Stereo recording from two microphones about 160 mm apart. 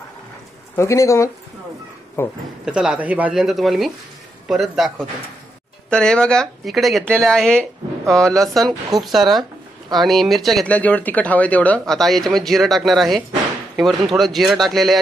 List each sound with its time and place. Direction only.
0.7 s speech: 20° left (ahead or behind)
2.6 s speech: 5° right (ahead or behind)